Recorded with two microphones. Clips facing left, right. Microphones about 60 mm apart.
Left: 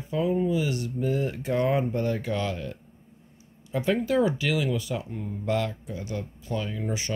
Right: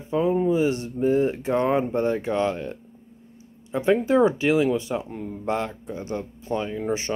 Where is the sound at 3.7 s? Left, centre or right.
Right.